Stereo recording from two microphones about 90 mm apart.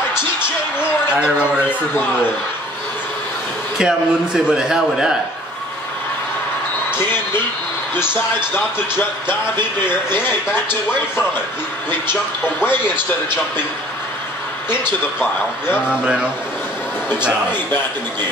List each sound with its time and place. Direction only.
1.0 s a man's voice: 10° right (ahead or behind)
3.7 s a man's voice: 10° right (ahead or behind)
7.9 s speech: 25° left (ahead or behind)
15.9 s a man's voice: 10° right (ahead or behind)
17.5 s speech: 25° left (ahead or behind)